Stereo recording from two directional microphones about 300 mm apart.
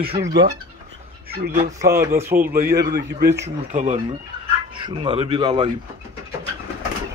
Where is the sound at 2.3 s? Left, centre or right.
Right.